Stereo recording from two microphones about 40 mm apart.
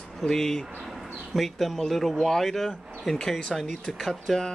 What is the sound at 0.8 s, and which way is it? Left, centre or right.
Speech, centre.